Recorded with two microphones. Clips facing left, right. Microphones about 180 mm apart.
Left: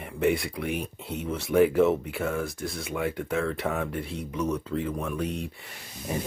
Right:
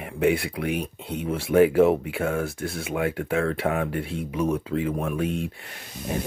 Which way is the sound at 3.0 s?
65° right (ahead or behind).